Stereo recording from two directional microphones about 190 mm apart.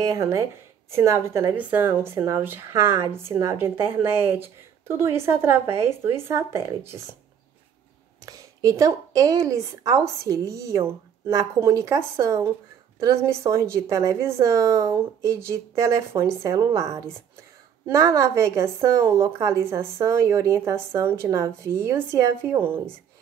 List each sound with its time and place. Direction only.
0.0 s speech: 15° right (ahead or behind)
8.3 s speech: 20° right (ahead or behind)